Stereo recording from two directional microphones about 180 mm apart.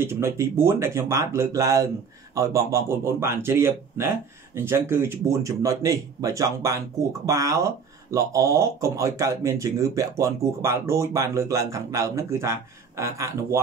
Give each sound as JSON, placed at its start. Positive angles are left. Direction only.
{"t": 0.0, "sound": "speech", "side_deg": -15}